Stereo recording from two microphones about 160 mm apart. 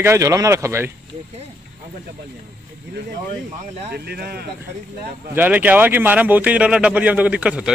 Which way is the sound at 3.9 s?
80° right.